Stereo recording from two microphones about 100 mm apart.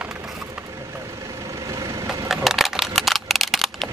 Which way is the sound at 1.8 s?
30° right (ahead or behind).